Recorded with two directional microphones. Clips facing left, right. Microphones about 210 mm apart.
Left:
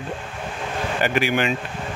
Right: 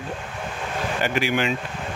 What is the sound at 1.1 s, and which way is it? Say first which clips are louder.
Speech: left 1 dB; 55° left (ahead or behind).